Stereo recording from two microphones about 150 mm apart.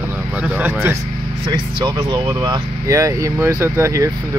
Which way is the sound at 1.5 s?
30° right (ahead or behind).